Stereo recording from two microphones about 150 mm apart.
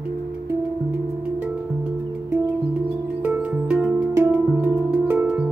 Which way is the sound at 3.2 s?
10° right (ahead or behind).